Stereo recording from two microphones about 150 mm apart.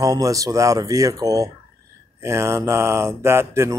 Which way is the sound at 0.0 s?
25° right (ahead or behind).